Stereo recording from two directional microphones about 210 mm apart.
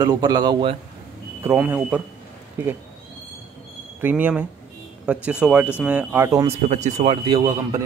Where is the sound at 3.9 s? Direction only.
10° right (ahead or behind).